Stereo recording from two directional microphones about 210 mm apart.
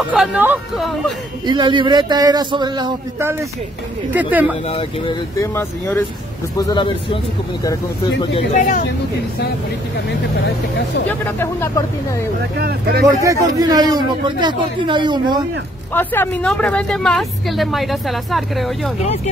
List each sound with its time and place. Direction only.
0.1 s a woman's voice: 5° right (ahead or behind)
1.4 s a man's voice: 20° right (ahead or behind)
4.6 s a man's voice: 25° left (ahead or behind)
5.4 s a man's voice: 10° left (ahead or behind)
8.2 s speech: 30° left (ahead or behind)
11.1 s speech: 10° left (ahead or behind)
12.5 s speech: 50° right (ahead or behind)
13.0 s a man's voice: 15° right (ahead or behind)
15.9 s a woman's voice: 10° left (ahead or behind)
18.9 s speech: 30° left (ahead or behind)